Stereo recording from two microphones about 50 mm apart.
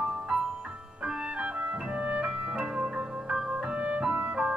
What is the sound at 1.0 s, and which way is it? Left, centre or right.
Music, right.